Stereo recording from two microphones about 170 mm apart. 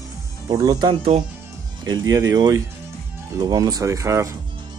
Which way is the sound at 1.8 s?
20° right (ahead or behind).